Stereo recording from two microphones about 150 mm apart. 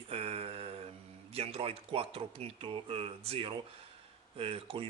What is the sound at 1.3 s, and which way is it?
Speech, 40° right (ahead or behind).